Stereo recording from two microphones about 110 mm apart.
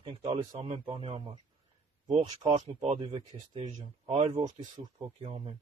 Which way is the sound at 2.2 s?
40° right (ahead or behind).